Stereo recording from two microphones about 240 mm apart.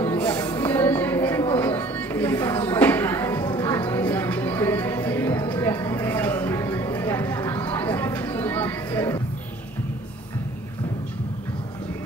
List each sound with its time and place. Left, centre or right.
0.0 s music: centre